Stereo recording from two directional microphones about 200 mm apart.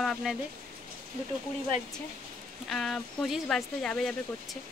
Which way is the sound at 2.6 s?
Centre (ahead or behind).